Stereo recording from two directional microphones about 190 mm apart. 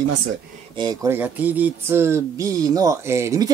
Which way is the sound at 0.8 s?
20° right (ahead or behind).